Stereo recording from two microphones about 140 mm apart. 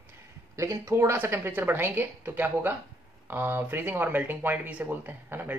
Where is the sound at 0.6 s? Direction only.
20° right (ahead or behind).